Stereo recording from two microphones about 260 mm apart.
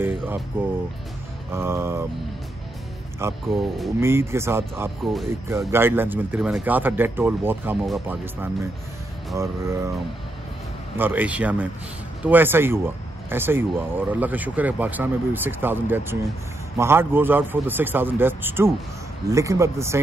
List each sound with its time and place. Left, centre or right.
0.0 s speech: centre
3.2 s speech: centre
11.0 s a man's voice: centre